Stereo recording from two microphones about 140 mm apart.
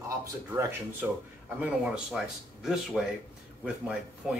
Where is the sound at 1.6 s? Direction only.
5° right (ahead or behind).